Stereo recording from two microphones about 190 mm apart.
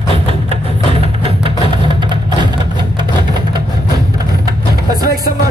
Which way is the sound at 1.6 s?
25° right (ahead or behind).